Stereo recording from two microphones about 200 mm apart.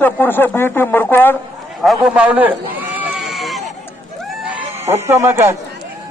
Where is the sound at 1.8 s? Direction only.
5° right (ahead or behind).